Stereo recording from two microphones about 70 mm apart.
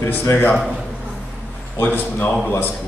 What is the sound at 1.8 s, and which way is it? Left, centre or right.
Speech, left.